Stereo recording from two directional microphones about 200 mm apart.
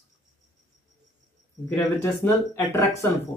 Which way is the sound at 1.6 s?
10° left (ahead or behind).